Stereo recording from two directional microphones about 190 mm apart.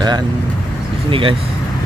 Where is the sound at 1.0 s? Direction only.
30° right (ahead or behind).